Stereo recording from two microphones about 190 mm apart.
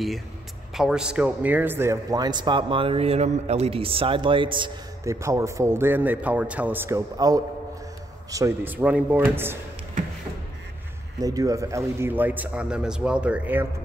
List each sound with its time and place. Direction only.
0.7 s a man's voice: 5° right (ahead or behind)
11.1 s a man's voice: 20° right (ahead or behind)